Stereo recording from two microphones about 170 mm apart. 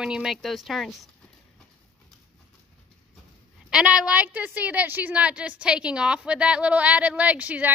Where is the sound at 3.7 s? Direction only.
5° right (ahead or behind).